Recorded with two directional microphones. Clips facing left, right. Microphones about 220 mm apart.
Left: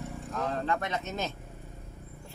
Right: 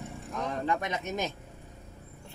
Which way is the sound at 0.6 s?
15° right (ahead or behind).